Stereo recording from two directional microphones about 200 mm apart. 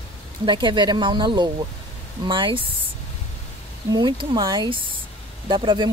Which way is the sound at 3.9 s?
25° right (ahead or behind).